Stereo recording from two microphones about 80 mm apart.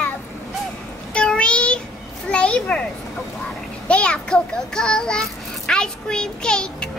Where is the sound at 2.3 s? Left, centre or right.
Centre.